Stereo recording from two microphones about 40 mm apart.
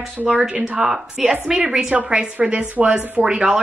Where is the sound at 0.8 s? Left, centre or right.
Centre.